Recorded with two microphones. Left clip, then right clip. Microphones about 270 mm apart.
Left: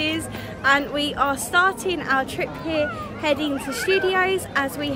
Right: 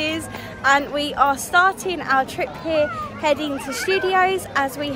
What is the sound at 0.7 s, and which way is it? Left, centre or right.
A woman's voice, centre.